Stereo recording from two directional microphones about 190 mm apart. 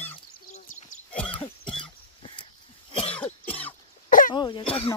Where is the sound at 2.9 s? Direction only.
30° left (ahead or behind).